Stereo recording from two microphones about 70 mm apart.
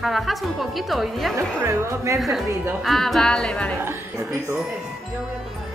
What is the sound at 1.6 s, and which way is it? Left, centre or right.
Speech, right.